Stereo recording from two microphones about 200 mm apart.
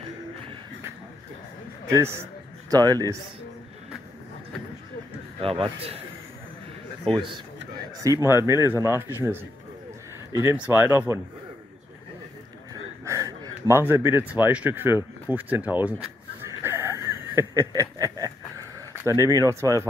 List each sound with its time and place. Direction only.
1.9 s a man's voice: 15° right (ahead or behind)
5.4 s a man's voice: 30° right (ahead or behind)
7.2 s a man's voice: 25° right (ahead or behind)
13.0 s speech: 15° right (ahead or behind)
16.6 s a sound: 10° right (ahead or behind)
19.0 s speech: 15° right (ahead or behind)